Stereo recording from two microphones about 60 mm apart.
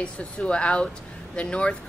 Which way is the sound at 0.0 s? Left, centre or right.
Centre.